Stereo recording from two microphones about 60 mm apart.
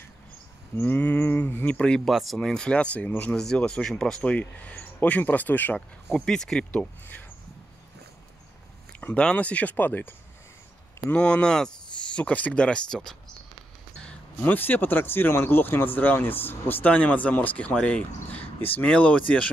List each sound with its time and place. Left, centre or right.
0.8 s a sound: left
1.8 s speech: centre
2.0 s speech: centre; by 3.3 s left
3.3 s speech: centre
4.2 s speech: left
6.1 s speech: centre
9.0 s speech: centre
11.1 s speech: centre
14.4 s speech: left